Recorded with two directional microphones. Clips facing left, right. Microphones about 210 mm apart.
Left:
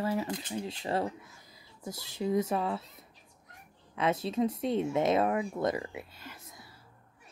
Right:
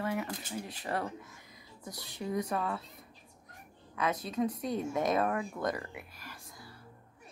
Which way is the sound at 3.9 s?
25° left (ahead or behind).